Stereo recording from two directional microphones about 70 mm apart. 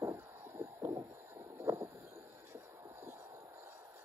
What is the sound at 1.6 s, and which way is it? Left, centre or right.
Vehicle, right.